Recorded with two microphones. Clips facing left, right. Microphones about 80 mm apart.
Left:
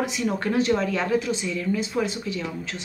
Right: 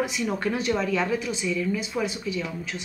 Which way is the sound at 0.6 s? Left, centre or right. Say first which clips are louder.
Left 2 dB; left.